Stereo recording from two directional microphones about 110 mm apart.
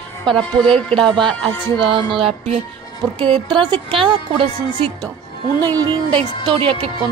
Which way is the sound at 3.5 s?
45° right (ahead or behind).